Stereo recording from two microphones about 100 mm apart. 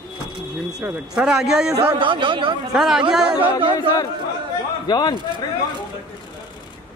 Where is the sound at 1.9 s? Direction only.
55° right (ahead or behind).